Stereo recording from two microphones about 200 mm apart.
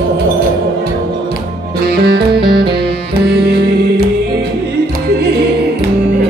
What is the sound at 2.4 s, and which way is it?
Music, 25° right (ahead or behind).